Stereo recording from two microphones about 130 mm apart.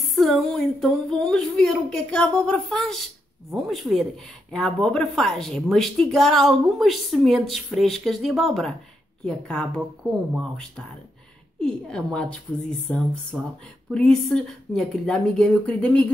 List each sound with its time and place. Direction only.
0.1 s a woman's voice: centre (ahead or behind)
11.6 s a woman's voice: 5° left (ahead or behind)